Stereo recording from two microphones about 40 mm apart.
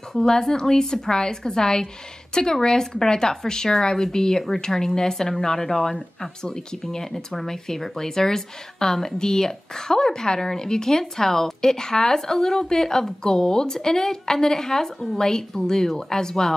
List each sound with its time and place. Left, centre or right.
0.2 s speech: centre